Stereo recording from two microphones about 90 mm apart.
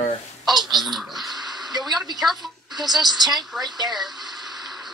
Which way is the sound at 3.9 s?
Centre (ahead or behind).